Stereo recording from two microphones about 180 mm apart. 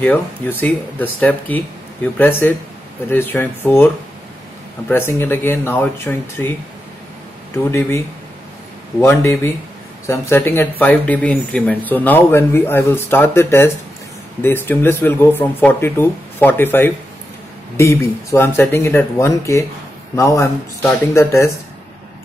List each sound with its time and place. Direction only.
0.0 s speech: 10° left (ahead or behind)
7.5 s speech: 15° left (ahead or behind)
9.0 s speech: 15° left (ahead or behind)